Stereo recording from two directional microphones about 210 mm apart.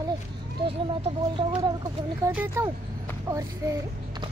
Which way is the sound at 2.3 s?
10° right (ahead or behind).